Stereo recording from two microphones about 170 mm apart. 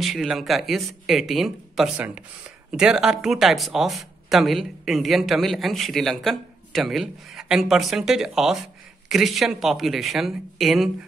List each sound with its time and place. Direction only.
0.0 s speech: centre (ahead or behind)